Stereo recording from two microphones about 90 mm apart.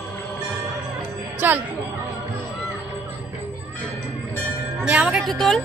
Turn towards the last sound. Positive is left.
turn(degrees=0)  # may be behind; listen again after turning